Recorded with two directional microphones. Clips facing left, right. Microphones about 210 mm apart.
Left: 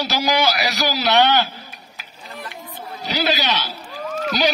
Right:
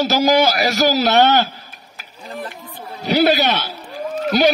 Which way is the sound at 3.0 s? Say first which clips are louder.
Right 7 dB; 55° right (ahead or behind).